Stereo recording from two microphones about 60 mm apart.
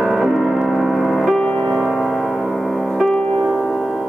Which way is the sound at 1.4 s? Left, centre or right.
Centre.